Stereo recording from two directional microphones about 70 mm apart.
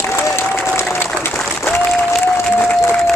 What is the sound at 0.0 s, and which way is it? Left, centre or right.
Applause, left.